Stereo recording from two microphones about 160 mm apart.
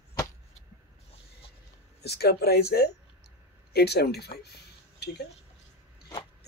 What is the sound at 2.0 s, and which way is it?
Speech, 90° left.